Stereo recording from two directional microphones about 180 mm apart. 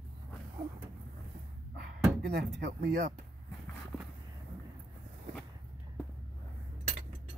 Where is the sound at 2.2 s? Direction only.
65° right (ahead or behind).